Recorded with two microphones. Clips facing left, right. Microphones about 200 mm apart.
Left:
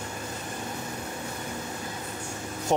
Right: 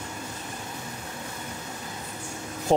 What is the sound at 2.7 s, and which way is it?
Speech, 35° right (ahead or behind).